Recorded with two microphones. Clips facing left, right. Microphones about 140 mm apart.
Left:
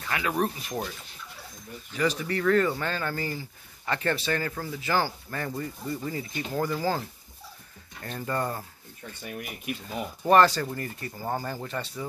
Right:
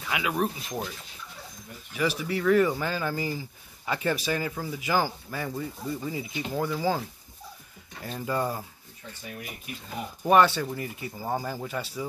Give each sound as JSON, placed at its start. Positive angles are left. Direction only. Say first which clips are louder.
{"t": 0.0, "sound": "speech", "louder": "even", "side_deg": -5}
{"t": 2.0, "sound": "speech", "louder": "left 1 dB", "side_deg": -10}
{"t": 8.0, "sound": "speech", "louder": "right 1 dB", "side_deg": -5}
{"t": 9.7, "sound": "speech", "louder": "left 10 dB", "side_deg": 65}
{"t": 10.2, "sound": "speech", "louder": "left 1 dB", "side_deg": -5}